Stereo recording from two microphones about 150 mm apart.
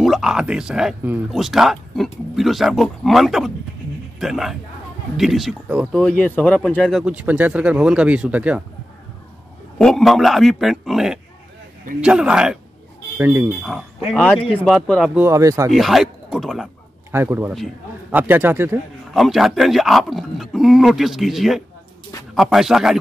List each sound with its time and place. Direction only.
0.0 s speech: centre (ahead or behind)
6.2 s speech: 10° left (ahead or behind)
7.2 s speech: 10° right (ahead or behind)
9.8 s speech: 5° left (ahead or behind); by 13.5 s 15° right (ahead or behind)
14.1 s speech: 5° left (ahead or behind)
15.1 s speech: 20° right (ahead or behind)
15.7 s speech: centre (ahead or behind)
17.1 s speech: 15° right (ahead or behind)
19.1 s speech: centre (ahead or behind)